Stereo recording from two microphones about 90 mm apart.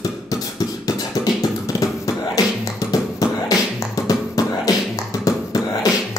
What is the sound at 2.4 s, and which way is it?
Music, 40° left (ahead or behind).